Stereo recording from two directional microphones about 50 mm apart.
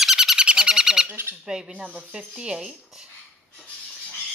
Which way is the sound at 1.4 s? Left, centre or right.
Centre.